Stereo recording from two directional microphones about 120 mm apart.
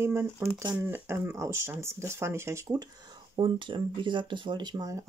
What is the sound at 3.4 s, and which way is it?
Speech, 45° right (ahead or behind).